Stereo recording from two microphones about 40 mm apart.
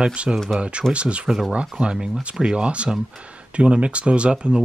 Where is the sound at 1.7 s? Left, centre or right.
Centre.